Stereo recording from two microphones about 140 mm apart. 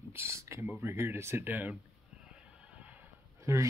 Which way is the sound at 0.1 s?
20° right (ahead or behind).